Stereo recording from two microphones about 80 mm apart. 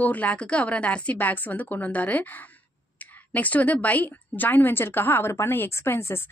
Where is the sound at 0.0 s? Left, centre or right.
Centre.